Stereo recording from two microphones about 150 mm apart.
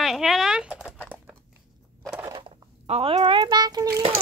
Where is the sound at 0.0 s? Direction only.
Centre (ahead or behind).